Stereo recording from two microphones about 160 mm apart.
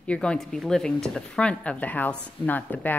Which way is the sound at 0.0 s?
5° left (ahead or behind).